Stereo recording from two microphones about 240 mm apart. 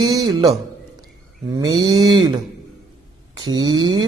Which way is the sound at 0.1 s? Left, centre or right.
Centre.